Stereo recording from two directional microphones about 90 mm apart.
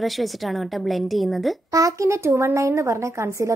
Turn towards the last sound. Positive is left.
turn(degrees=-35)  # may be behind; listen again after turning